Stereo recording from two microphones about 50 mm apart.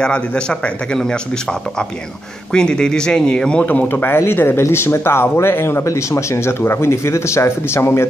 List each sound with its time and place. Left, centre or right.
0.0 s speech: centre
3.6 s speech: left
5.9 s speech: left
6.6 s speech: left